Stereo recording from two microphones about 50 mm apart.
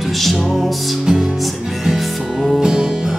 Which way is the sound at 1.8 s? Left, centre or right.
Centre.